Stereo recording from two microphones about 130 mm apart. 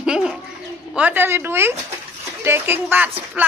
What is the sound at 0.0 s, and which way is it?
Bird, 5° right (ahead or behind).